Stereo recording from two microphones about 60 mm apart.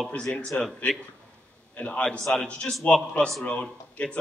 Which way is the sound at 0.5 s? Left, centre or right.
Centre.